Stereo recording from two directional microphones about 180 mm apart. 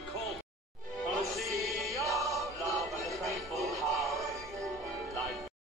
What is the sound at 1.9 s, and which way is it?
Music, 15° right (ahead or behind).